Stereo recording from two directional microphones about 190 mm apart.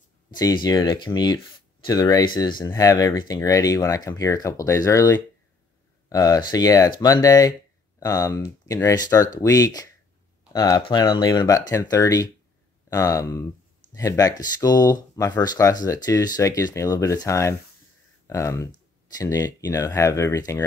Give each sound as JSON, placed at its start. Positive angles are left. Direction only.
{"t": 0.3, "sound": "speech", "side_deg": 20}